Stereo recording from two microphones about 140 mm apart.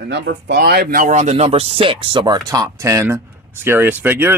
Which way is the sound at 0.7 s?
90° right.